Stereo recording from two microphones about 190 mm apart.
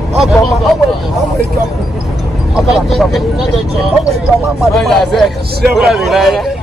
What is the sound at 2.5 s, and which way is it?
A man's voice, centre (ahead or behind).